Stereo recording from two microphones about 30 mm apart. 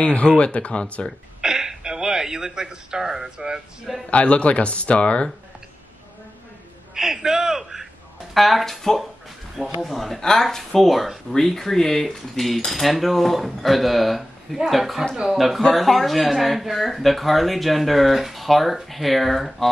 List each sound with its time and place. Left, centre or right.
0.0 s speech: left
1.4 s speech: right
4.1 s speech: left
7.0 s a sound: centre
8.4 s speech: centre
11.3 s speech: centre